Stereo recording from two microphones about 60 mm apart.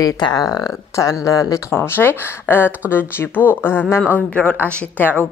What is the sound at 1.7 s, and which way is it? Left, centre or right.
Speech, left.